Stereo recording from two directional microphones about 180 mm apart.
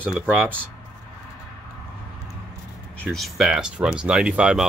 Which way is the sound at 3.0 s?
Centre (ahead or behind).